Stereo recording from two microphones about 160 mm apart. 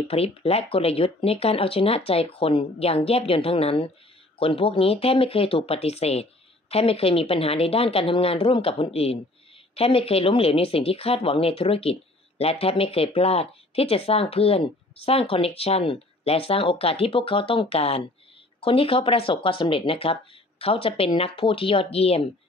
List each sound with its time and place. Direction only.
0.1 s speech: 40° left (ahead or behind)